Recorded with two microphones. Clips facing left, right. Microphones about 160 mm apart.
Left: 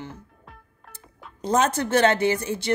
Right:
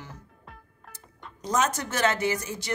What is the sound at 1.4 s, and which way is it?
A woman's voice, 30° left (ahead or behind).